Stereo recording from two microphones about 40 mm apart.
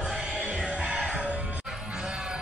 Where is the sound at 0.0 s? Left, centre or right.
Right.